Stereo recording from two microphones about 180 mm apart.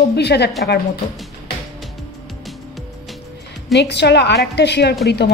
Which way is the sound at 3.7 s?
70° left (ahead or behind).